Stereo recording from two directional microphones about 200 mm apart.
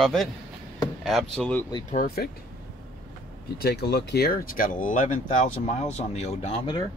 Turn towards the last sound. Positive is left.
turn(degrees=30)  # may be behind; listen again after turning